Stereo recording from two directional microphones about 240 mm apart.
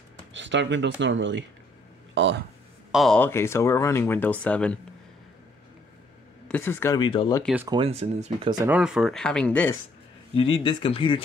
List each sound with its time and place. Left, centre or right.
0.3 s speech: right
2.9 s speech: centre
6.4 s speech: centre
7.6 s speech: right
8.6 s speech: centre
10.3 s speech: left